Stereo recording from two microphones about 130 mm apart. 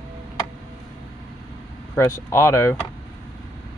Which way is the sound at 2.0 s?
20° left (ahead or behind).